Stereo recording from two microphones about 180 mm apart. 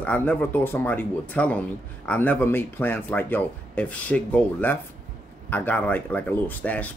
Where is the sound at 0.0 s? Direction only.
10° left (ahead or behind).